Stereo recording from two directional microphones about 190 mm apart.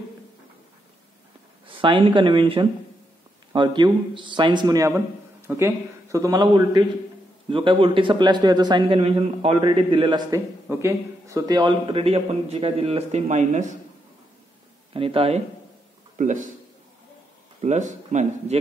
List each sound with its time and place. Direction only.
1.7 s a man's voice: 25° right (ahead or behind)
15.0 s a man's voice: 30° right (ahead or behind)
16.2 s a man's voice: 40° right (ahead or behind)
17.6 s speech: 40° right (ahead or behind)